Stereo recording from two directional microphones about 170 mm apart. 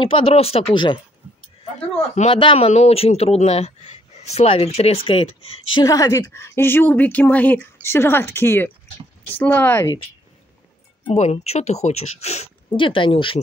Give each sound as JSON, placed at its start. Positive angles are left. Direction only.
{"t": 0.0, "sound": "a man's voice", "side_deg": 35}
{"t": 2.1, "sound": "a man's voice", "side_deg": 35}
{"t": 5.9, "sound": "speech", "side_deg": 20}
{"t": 11.1, "sound": "a man's voice", "side_deg": 40}